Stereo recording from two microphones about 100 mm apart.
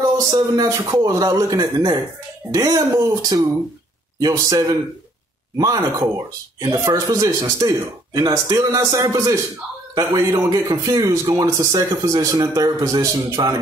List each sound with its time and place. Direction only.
0.0 s speech: 35° right (ahead or behind)
13.0 s a man's voice: 25° right (ahead or behind)